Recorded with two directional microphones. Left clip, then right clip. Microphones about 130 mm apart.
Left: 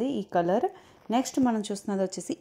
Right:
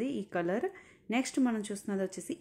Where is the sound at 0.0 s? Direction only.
15° right (ahead or behind).